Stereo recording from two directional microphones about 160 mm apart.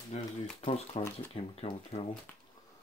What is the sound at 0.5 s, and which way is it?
Shuffling cards, 40° left (ahead or behind).